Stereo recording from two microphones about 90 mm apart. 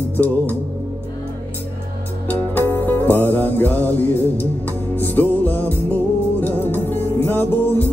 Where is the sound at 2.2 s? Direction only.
20° left (ahead or behind).